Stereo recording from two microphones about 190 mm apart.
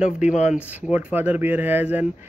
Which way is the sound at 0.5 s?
5° right (ahead or behind).